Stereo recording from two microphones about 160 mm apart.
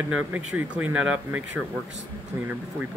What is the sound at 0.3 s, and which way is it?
Speech, 10° right (ahead or behind).